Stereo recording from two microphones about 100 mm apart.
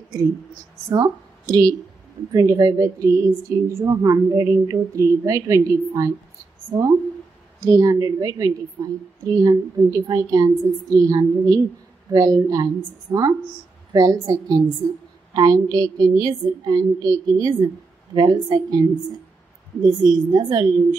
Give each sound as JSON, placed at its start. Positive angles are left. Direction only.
{"t": 0.9, "sound": "a woman's voice", "side_deg": -40}
{"t": 7.6, "sound": "a woman's voice", "side_deg": -35}